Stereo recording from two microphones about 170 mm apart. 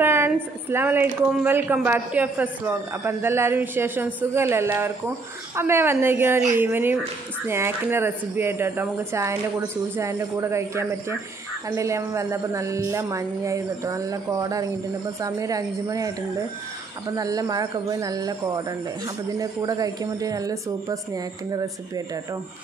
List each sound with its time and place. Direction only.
0.0 s a woman's voice: 15° right (ahead or behind)